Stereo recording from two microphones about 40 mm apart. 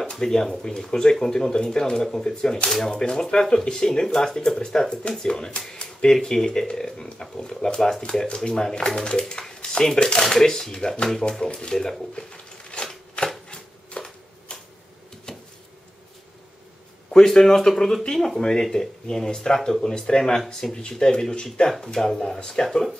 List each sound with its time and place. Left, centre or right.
0.1 s speech: centre
12.7 s a sound: left
13.2 s shuffling cards: left
13.5 s a sound: centre
17.1 s speech: centre
21.6 s speech: centre